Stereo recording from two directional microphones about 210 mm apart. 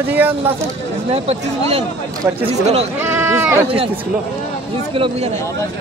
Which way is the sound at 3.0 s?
10° right (ahead or behind).